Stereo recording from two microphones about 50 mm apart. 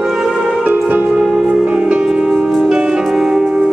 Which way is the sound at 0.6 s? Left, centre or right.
Right.